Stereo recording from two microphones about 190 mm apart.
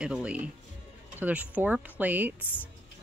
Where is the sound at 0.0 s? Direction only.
5° right (ahead or behind).